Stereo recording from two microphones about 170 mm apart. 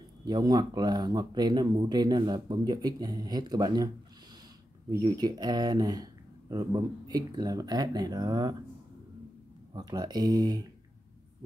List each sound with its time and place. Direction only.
0.2 s speech: 25° right (ahead or behind)
4.9 s speech: 25° right (ahead or behind)
9.8 s speech: 25° right (ahead or behind)